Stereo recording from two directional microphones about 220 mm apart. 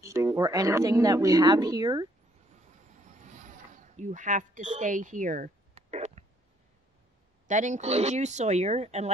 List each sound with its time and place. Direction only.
0.0 s speech: 15° right (ahead or behind)
3.1 s a sound: 35° right (ahead or behind)
7.4 s speech: 35° right (ahead or behind)